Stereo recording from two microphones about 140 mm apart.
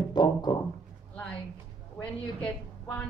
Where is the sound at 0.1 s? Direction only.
30° left (ahead or behind).